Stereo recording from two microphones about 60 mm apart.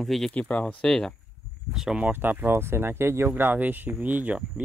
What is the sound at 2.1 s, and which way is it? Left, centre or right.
Speech, right.